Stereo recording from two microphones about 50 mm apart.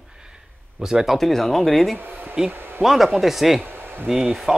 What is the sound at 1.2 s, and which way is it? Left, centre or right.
Speech, centre.